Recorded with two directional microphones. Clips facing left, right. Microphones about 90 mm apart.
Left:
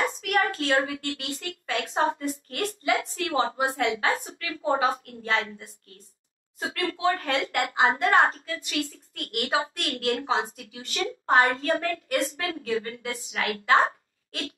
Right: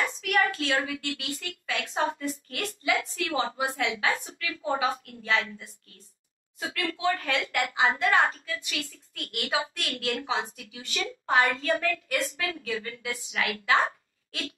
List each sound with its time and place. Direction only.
0.0 s a woman's voice: 40° left (ahead or behind)